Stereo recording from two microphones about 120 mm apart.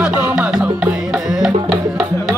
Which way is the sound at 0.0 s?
10° right (ahead or behind).